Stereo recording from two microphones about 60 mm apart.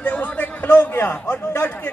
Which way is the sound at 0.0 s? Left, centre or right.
Left.